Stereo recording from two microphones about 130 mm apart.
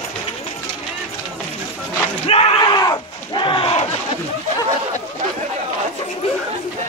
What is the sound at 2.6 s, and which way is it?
Battle cry, 30° left (ahead or behind).